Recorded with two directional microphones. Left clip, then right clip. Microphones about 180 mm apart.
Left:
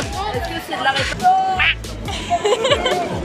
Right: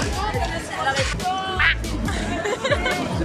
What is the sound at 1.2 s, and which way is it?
Music, 5° left (ahead or behind).